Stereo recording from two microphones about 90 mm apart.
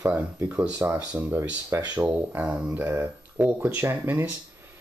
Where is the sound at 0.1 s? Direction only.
20° right (ahead or behind).